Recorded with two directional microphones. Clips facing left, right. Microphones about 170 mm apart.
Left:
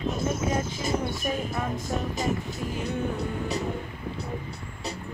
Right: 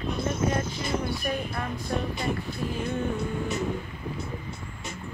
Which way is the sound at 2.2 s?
40° left (ahead or behind).